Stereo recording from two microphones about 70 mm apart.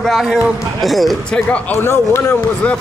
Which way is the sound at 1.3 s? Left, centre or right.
Centre.